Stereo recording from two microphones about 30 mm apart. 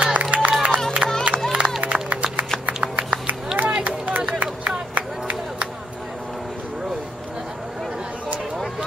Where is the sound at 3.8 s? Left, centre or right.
Right.